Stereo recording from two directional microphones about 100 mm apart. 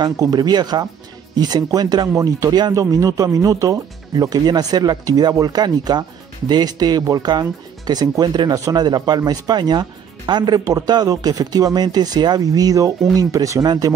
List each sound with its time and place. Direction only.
0.0 s speech: 40° right (ahead or behind)